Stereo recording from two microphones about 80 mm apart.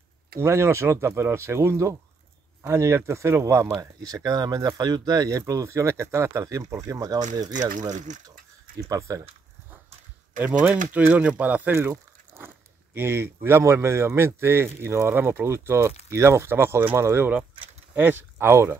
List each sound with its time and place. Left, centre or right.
0.4 s speech: right
10.4 s speech: right